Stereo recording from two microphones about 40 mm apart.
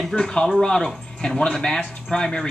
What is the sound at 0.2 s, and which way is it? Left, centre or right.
Speech, centre.